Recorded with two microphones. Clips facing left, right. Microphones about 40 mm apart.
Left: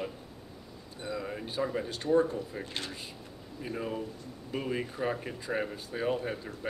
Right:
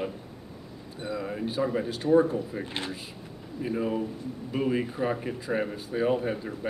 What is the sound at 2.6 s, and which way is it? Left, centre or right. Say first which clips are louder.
Speech: right 4 dB; right.